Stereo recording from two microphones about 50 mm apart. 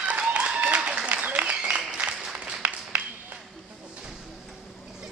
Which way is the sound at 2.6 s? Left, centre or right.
Right.